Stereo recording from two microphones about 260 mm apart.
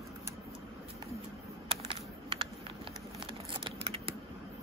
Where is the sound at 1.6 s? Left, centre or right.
Centre.